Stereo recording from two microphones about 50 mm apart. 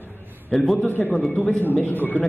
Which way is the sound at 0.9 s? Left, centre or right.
Left.